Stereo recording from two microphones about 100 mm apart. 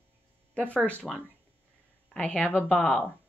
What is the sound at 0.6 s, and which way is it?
Speech, 15° left (ahead or behind).